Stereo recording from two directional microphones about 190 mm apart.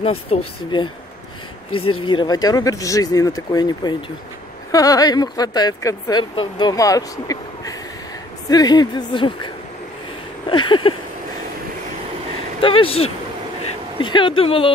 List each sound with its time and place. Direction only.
0.0 s speech: 30° left (ahead or behind)
2.0 s speech: 25° left (ahead or behind)
10.5 s speech: 25° left (ahead or behind)
12.5 s speech: 30° left (ahead or behind)